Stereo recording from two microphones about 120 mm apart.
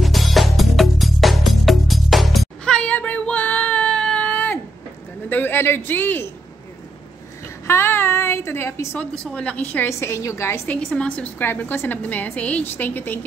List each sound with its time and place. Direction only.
0.0 s music: centre (ahead or behind)
5.3 s a man's voice: 15° left (ahead or behind)
7.6 s a woman's voice: 20° left (ahead or behind)
9.3 s a woman's voice: 10° left (ahead or behind)
9.8 s a woman's voice: 25° left (ahead or behind)
10.8 s a woman's voice: 5° left (ahead or behind)